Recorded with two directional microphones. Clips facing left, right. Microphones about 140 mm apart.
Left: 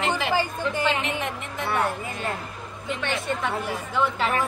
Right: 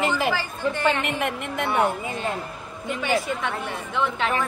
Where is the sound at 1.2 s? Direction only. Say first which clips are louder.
Right 4 dB; 60° right (ahead or behind).